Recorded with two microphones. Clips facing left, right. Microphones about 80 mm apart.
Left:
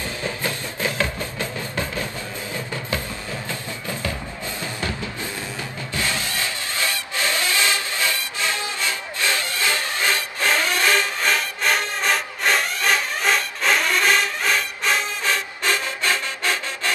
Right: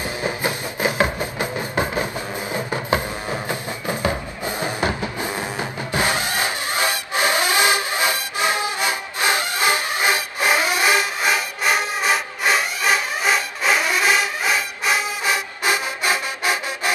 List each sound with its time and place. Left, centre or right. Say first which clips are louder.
0.2 s music: right 4 dB; centre